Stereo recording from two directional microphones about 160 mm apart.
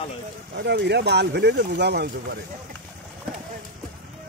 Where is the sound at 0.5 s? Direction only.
90° right.